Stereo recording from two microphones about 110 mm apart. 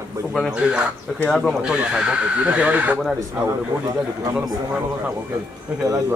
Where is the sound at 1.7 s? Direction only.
5° right (ahead or behind).